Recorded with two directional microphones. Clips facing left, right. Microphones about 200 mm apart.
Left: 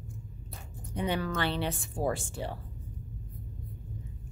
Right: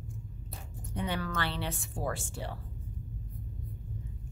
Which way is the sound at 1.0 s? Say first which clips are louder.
Left 4 dB; 20° left (ahead or behind).